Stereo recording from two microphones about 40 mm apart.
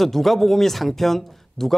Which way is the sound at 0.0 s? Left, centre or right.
Centre.